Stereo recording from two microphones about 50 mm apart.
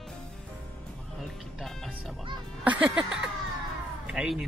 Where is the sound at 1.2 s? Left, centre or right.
Centre.